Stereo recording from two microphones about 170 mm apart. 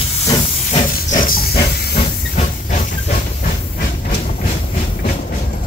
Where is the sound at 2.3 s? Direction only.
45° left (ahead or behind).